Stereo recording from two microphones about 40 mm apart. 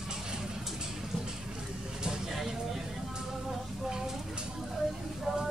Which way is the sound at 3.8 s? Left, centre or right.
Centre.